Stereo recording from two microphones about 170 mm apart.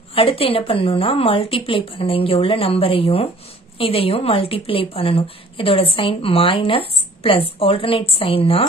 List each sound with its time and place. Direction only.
0.1 s a woman's voice: 35° left (ahead or behind)